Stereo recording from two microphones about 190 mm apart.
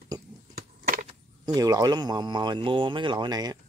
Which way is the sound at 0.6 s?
50° right (ahead or behind).